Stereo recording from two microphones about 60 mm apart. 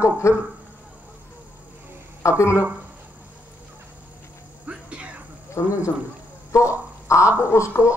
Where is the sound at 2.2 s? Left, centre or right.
Left.